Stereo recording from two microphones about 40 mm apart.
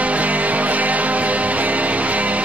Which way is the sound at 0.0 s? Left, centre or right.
Right.